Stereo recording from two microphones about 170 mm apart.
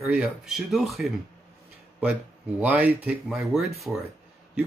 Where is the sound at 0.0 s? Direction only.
5° right (ahead or behind).